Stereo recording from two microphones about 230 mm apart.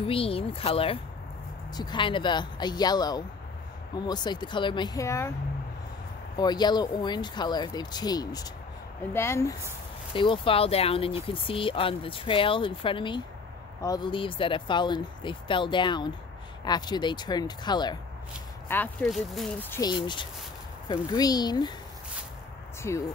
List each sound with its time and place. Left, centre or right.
0.0 s speech: left
6.3 s speech: centre
18.7 s speech: centre
19.8 s speech: centre
22.8 s speech: centre